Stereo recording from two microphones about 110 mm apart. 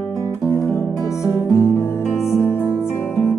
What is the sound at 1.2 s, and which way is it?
Music, 25° left (ahead or behind).